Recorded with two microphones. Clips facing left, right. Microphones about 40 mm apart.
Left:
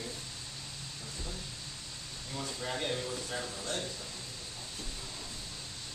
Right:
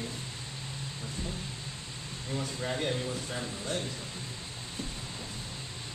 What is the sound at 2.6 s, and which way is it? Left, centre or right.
Speech, centre.